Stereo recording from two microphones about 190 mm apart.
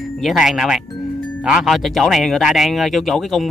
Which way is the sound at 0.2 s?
Centre (ahead or behind).